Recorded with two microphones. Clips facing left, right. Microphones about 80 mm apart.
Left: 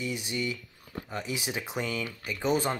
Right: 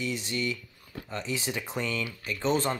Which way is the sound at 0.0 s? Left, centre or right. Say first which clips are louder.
Right 1 dB; centre.